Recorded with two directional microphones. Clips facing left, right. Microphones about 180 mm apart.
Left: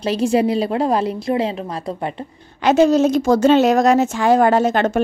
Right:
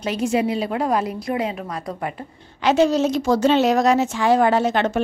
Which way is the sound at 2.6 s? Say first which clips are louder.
Left 4 dB; 50° left (ahead or behind).